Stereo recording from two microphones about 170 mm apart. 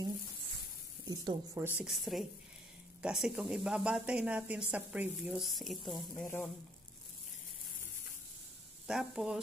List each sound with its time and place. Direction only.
1.0 s speech: 20° right (ahead or behind)
1.8 s speech: centre (ahead or behind)
6.2 s speech: 10° left (ahead or behind)
8.8 s speech: 5° right (ahead or behind)